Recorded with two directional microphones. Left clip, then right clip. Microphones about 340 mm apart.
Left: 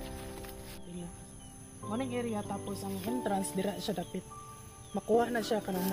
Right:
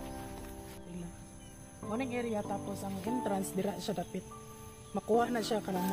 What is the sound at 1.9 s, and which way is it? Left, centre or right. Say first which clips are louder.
Speech: even; centre.